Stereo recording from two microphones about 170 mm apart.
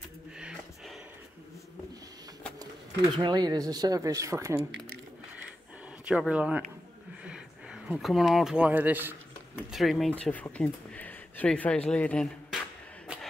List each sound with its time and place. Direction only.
0.4 s a sound: 5° right (ahead or behind)
2.6 s speech: 25° right (ahead or behind)
6.0 s speech: 5° right (ahead or behind)
9.7 s speech: centre (ahead or behind)